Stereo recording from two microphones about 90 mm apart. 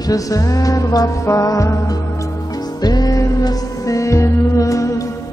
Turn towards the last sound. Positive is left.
turn(degrees=35)  # may be behind; listen again after turning